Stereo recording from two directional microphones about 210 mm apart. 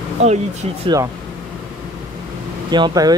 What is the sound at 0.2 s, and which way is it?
Speech, 30° right (ahead or behind).